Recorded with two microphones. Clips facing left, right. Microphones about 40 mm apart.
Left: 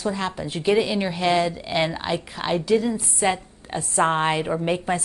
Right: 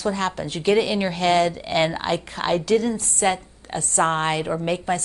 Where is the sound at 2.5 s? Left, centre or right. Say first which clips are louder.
Even; centre.